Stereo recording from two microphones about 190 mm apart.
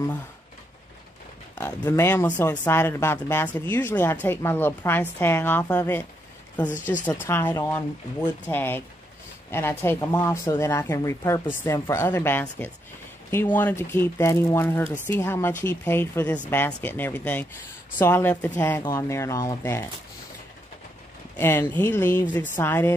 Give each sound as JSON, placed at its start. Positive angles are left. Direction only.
{"t": 1.5, "sound": "speech", "side_deg": 10}
{"t": 6.7, "sound": "speech", "side_deg": 40}
{"t": 7.1, "sound": "speech", "side_deg": 15}
{"t": 21.4, "sound": "speech", "side_deg": 10}